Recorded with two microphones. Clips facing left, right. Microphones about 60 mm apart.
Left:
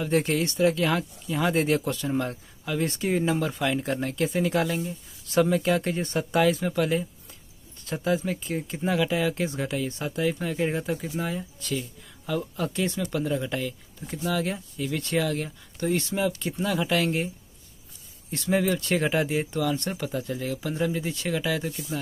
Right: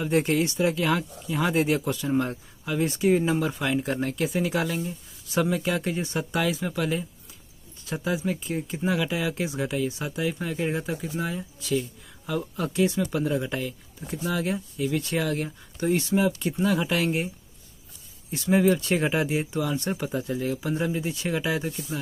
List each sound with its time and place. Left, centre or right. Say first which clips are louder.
0.0 s speech: right 1 dB; right; by 3.9 s centre
3.9 s speech: even; right
4.6 s speech: left 1 dB; centre
7.8 s speech: left 2 dB; centre
9.6 s speech: right 1 dB; centre
10.5 s speech: left 1 dB; centre
18.3 s speech: right 3 dB; centre